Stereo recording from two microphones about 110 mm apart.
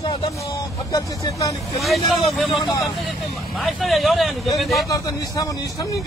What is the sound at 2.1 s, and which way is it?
Speech, centre (ahead or behind).